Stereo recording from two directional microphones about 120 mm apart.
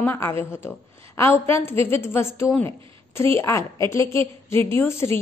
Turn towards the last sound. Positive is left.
turn(degrees=20)  # may be behind; listen again after turning